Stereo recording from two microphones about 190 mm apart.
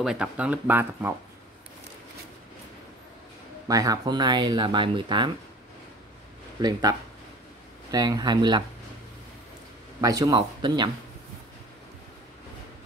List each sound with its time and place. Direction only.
0.0 s speech: 5° right (ahead or behind)
3.6 s speech: 20° right (ahead or behind)
6.6 s speech: 20° right (ahead or behind)
9.9 s speech: 20° right (ahead or behind)